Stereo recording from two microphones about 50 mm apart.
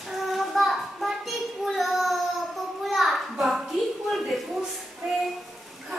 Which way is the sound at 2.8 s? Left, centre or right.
Centre.